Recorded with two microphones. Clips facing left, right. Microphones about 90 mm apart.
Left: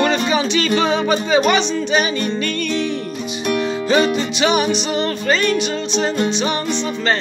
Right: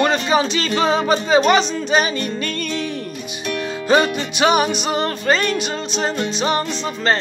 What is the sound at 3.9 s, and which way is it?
Music, 55° right (ahead or behind).